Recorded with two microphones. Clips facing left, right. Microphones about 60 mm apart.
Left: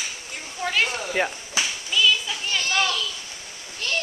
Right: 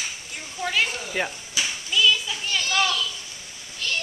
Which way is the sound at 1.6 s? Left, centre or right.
Left.